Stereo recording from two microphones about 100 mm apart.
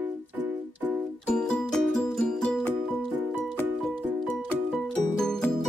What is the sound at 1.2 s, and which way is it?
Music, 10° left (ahead or behind).